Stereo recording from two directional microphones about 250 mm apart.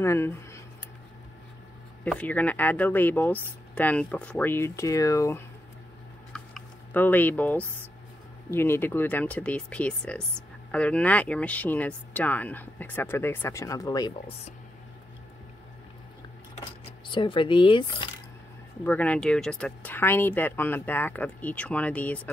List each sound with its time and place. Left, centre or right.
0.0 s speech: centre
2.0 s speech: centre
6.3 s a sound: centre
8.5 s speech: centre
17.1 s speech: centre
18.9 s speech: centre